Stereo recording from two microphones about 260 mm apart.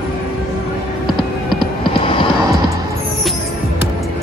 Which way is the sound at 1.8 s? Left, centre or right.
Centre.